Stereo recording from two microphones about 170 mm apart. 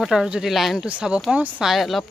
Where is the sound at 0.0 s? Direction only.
5° right (ahead or behind).